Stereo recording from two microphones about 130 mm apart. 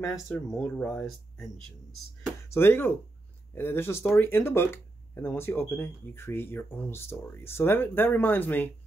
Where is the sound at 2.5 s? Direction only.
15° left (ahead or behind).